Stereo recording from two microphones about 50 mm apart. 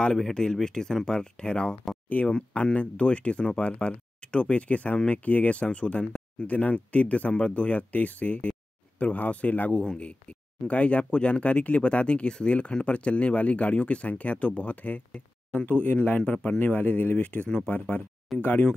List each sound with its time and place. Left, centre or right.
0.3 s speech: centre; by 18.7 s left